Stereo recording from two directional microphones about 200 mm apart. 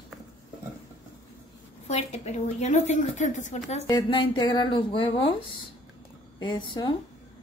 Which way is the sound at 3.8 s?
20° left (ahead or behind).